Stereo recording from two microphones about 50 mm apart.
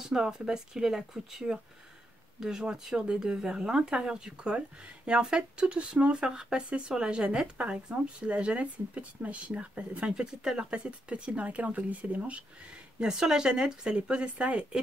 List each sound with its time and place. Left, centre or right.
0.0 s speech: centre